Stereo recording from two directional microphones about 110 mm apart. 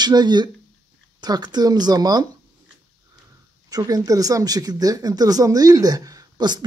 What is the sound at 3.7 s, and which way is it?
Speech, 35° right (ahead or behind).